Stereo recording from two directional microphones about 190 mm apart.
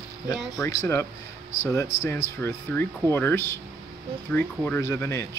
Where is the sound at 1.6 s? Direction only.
15° left (ahead or behind).